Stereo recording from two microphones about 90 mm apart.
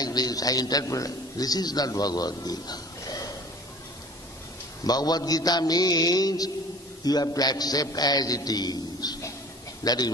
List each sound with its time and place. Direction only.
0.0 s a man's voice: 45° left (ahead or behind)
4.8 s a man's voice: 45° left (ahead or behind)